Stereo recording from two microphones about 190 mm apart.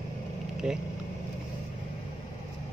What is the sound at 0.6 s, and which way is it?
Speech, 5° right (ahead or behind).